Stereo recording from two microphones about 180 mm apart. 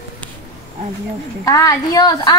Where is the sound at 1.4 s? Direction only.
20° left (ahead or behind).